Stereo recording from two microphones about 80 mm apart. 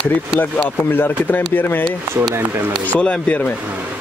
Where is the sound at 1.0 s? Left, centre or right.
Left.